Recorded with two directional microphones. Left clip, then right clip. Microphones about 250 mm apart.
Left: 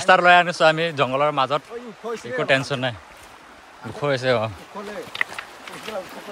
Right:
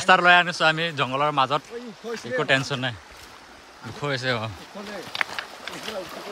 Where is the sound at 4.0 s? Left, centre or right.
Centre.